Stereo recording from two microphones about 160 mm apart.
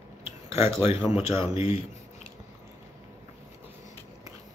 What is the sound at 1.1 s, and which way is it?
Speech, 40° left (ahead or behind).